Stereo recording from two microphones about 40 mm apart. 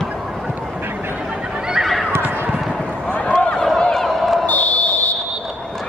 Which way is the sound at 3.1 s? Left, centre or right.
Left.